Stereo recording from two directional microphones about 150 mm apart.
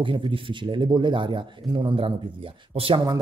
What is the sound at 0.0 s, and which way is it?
A man's voice, 35° right (ahead or behind).